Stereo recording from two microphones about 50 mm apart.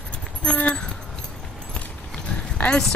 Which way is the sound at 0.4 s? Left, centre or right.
Left.